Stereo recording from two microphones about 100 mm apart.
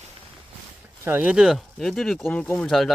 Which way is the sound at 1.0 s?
20° right (ahead or behind).